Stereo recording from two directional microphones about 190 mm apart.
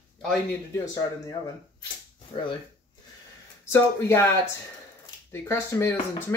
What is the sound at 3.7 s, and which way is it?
Speech, 15° left (ahead or behind).